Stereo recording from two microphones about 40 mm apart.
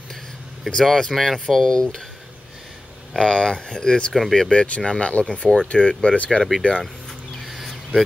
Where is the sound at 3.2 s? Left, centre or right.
Centre.